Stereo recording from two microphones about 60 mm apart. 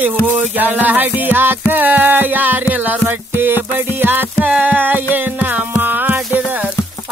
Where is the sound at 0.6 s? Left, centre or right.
Right.